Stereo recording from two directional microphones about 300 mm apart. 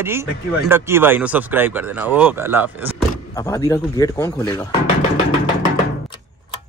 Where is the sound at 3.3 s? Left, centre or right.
Centre.